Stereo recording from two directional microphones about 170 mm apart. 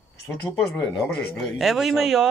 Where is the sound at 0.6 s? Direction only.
5° left (ahead or behind).